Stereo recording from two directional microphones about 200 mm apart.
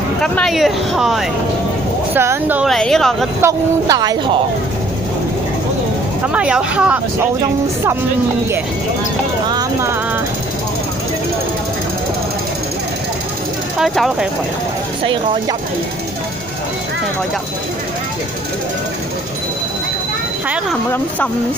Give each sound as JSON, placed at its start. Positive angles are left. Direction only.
{"t": 0.2, "sound": "speech", "side_deg": 0}
{"t": 2.7, "sound": "speech", "side_deg": 0}
{"t": 3.3, "sound": "speech", "side_deg": -15}
{"t": 6.2, "sound": "speech", "side_deg": -5}
{"t": 9.5, "sound": "music", "side_deg": -20}
{"t": 13.7, "sound": "speech", "side_deg": 0}